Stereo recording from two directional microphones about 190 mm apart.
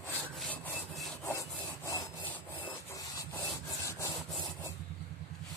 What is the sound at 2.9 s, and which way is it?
Wood, 15° left (ahead or behind).